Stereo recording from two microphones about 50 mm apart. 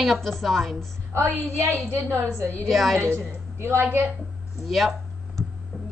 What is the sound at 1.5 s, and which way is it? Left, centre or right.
Speech, right.